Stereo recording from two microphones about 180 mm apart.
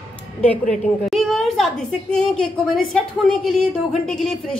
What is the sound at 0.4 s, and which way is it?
Speech, 5° left (ahead or behind).